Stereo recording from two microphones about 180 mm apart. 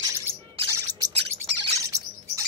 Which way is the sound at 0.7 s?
20° right (ahead or behind).